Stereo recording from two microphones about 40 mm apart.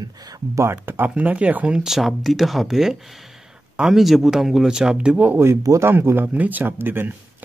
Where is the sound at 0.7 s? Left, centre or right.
Right.